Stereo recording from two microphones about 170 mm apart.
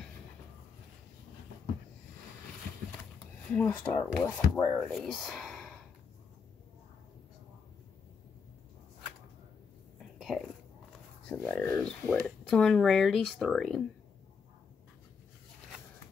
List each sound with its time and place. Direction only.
3.4 s speech: 5° left (ahead or behind)
10.1 s whispering: centre (ahead or behind)
11.2 s speech: 5° left (ahead or behind)
12.4 s speech: centre (ahead or behind)